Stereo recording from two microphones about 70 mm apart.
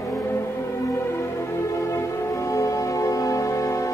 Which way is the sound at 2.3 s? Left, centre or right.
Left.